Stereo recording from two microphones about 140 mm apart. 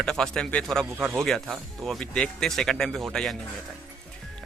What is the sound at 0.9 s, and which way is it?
Speech, 15° right (ahead or behind).